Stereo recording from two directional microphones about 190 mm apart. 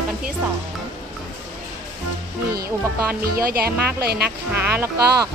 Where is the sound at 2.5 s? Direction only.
50° right (ahead or behind).